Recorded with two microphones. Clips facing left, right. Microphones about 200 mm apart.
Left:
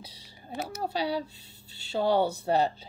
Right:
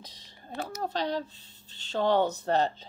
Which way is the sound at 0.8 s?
10° left (ahead or behind).